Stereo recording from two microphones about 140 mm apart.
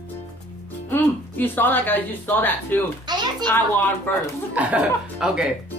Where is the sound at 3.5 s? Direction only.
15° left (ahead or behind).